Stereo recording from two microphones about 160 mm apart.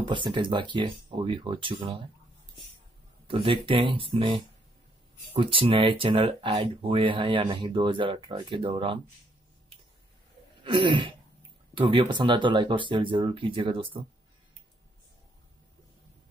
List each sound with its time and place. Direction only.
0.0 s speech: 30° right (ahead or behind)
3.3 s speech: 35° right (ahead or behind)
10.6 s speech: 30° right (ahead or behind)